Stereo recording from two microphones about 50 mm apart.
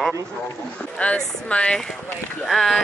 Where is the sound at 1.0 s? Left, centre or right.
Left.